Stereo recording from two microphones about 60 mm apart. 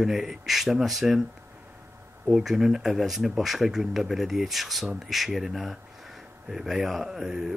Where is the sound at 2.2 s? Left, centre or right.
Centre.